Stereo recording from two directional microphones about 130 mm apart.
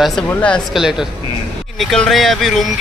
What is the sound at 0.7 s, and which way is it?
Speech, 5° right (ahead or behind).